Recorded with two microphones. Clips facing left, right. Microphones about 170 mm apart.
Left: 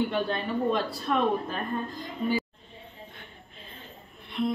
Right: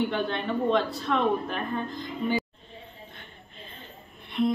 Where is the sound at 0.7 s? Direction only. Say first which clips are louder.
Right 5 dB; 10° left (ahead or behind).